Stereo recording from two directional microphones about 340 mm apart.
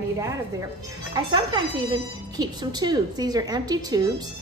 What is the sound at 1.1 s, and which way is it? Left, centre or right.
A woman's voice, centre.